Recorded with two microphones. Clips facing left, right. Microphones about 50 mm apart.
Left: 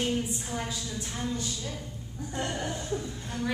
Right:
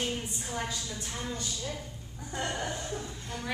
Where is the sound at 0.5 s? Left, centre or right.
Centre.